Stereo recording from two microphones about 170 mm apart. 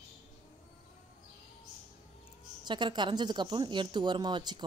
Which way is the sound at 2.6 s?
25° right (ahead or behind).